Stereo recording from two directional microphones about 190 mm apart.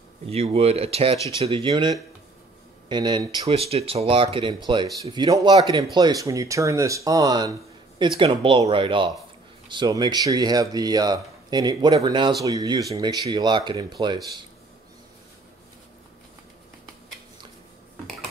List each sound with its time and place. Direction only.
0.3 s speech: 30° right (ahead or behind)